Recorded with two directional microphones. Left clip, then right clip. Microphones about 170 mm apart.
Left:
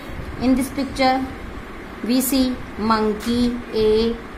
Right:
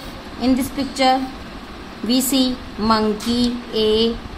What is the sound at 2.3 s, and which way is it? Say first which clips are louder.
Speech: right 2 dB; 15° right (ahead or behind).